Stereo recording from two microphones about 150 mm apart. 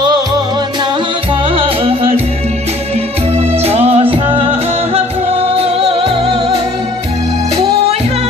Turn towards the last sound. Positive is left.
turn(degrees=-35)  # may be behind; listen again after turning